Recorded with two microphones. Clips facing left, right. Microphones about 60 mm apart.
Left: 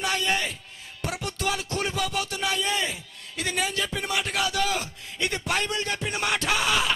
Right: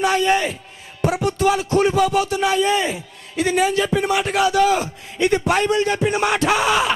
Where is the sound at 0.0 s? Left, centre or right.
Centre.